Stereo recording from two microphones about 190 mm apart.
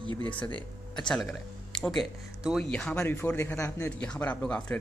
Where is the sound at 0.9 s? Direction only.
5° left (ahead or behind).